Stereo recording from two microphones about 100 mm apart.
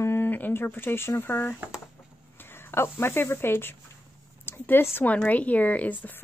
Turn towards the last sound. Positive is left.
turn(degrees=15)  # may be behind; listen again after turning